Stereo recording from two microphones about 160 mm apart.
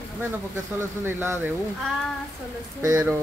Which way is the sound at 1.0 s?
15° right (ahead or behind).